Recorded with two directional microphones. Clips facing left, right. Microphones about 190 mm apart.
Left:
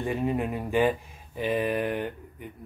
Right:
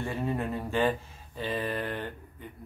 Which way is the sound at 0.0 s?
15° left (ahead or behind).